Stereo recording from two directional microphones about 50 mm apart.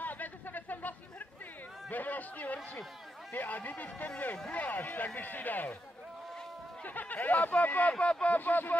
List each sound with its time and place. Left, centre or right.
0.0 s a sound: left
1.9 s speech: left
6.8 s speech: left
7.9 s speech: left
8.4 s speech: left